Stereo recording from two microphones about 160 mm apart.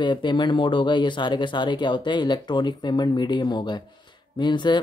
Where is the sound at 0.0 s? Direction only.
30° left (ahead or behind).